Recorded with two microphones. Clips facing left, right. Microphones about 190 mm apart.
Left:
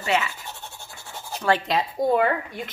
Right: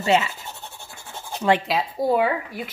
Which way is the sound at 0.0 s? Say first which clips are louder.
Right 4 dB; 25° right (ahead or behind).